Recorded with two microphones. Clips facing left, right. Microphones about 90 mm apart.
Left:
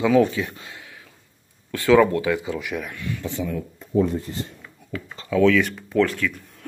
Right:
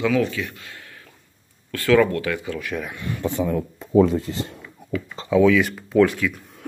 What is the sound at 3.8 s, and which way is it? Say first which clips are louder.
Speech: right 5 dB; 90° right.